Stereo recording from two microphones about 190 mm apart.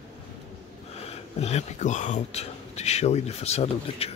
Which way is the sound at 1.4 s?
35° left (ahead or behind).